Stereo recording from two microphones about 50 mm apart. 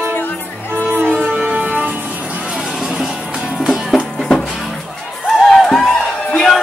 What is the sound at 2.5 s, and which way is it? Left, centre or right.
Vehicle, centre.